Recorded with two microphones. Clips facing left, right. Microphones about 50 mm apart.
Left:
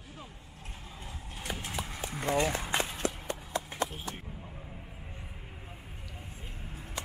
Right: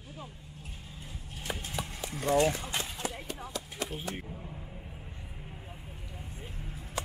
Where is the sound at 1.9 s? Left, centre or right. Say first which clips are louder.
Left 1 dB; left.